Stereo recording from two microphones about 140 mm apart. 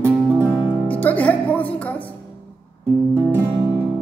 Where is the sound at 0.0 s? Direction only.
20° right (ahead or behind).